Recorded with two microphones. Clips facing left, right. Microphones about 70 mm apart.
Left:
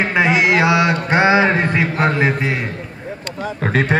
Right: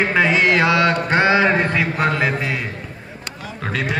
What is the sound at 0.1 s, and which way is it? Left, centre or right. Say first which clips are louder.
A man's voice: left 1 dB; centre.